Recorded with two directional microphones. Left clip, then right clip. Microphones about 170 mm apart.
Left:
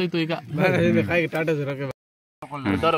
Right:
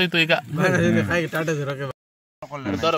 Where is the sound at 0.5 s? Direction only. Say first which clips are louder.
Even; 15° left (ahead or behind).